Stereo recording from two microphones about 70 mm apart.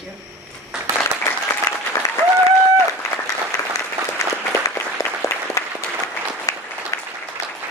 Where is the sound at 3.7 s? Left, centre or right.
Left.